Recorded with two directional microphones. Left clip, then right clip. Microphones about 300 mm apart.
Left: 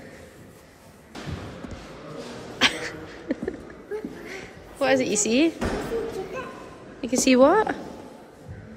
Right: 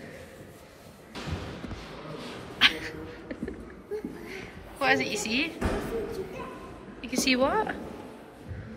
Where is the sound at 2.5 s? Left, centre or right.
Centre.